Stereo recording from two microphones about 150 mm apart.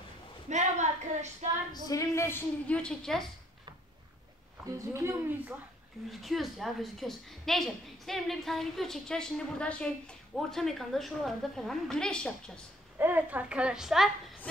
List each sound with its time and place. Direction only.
0.5 s a sound: 50° right (ahead or behind)
1.7 s a woman's voice: 25° left (ahead or behind); by 3.3 s 5° left (ahead or behind)
4.7 s speech: 15° right (ahead or behind)
6.0 s a woman's voice: centre (ahead or behind)
13.0 s a woman's voice: 10° right (ahead or behind)